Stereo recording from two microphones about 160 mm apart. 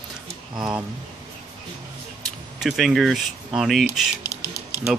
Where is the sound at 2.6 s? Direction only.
Centre (ahead or behind).